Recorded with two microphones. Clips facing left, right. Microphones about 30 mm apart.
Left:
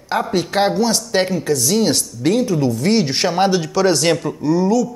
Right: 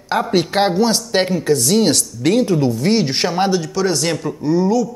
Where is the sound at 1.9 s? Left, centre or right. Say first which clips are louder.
Right 1 dB; right.